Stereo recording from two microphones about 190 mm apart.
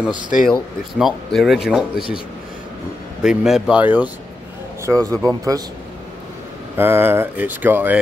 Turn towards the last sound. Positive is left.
turn(degrees=-10)  # may be behind; listen again after turning